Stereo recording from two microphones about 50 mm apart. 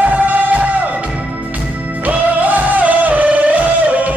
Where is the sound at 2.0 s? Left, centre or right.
Right.